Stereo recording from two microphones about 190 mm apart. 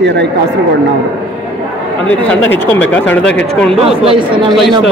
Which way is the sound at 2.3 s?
10° left (ahead or behind).